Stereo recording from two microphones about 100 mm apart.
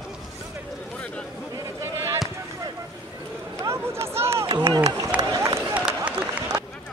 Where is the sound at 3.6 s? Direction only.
30° right (ahead or behind).